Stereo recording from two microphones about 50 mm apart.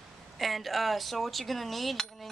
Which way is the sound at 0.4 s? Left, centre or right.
Centre.